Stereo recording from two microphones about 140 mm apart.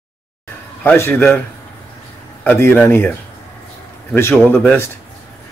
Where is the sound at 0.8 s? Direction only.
20° left (ahead or behind).